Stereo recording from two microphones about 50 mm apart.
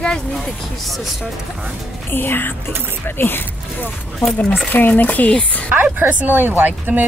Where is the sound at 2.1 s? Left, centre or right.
Left.